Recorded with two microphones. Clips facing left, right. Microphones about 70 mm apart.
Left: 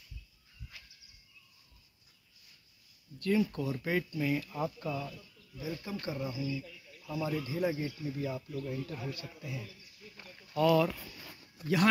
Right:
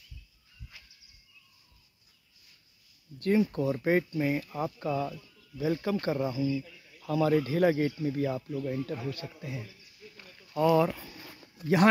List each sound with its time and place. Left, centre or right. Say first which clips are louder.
0.7 s a sound: even; centre
3.2 s speech: right 4 dB; right
4.5 s speech: right 2 dB; right
4.7 s speech: right 6 dB; right
5.6 s speech: right 10 dB; right
7.1 s speech: right 9 dB; right
8.0 s speech: right 7 dB; right
8.4 s speech: right 5 dB; right
8.7 s speech: right 5 dB; right
10.5 s speech: right 3 dB; centre